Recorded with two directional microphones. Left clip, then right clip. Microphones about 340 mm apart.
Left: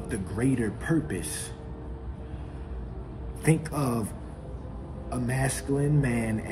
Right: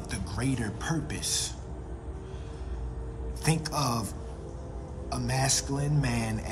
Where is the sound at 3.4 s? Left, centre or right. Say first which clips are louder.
Left 4 dB; centre.